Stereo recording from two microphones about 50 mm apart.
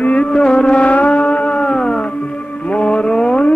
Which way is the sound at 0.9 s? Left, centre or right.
Left.